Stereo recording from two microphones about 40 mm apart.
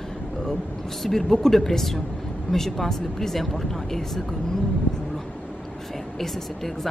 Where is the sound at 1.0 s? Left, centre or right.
Centre.